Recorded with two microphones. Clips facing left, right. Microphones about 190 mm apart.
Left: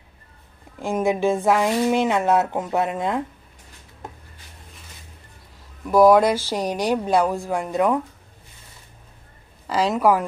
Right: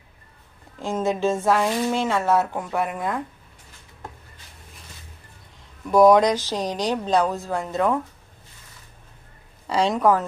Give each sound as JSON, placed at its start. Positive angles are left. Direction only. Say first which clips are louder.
{"t": 0.7, "sound": "speech", "louder": "left 2 dB", "side_deg": 15}
{"t": 5.9, "sound": "speech", "louder": "left 1 dB", "side_deg": 0}
{"t": 9.7, "sound": "speech", "louder": "left 1 dB", "side_deg": 5}